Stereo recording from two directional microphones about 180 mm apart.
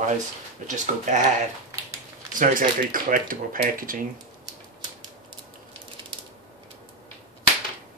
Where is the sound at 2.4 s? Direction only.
50° right (ahead or behind).